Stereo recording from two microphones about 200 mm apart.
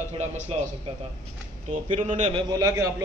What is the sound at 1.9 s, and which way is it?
Speech, 35° right (ahead or behind).